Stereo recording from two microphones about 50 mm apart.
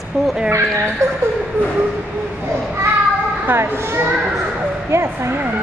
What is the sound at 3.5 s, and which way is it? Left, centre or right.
A woman's voice, right.